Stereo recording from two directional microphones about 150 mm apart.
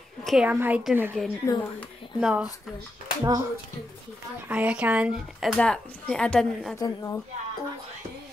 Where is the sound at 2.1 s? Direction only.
5° right (ahead or behind).